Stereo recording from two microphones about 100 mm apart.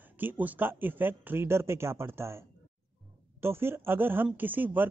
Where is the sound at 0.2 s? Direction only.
20° right (ahead or behind).